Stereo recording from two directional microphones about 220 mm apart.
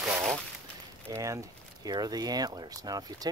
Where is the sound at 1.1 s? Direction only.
15° right (ahead or behind).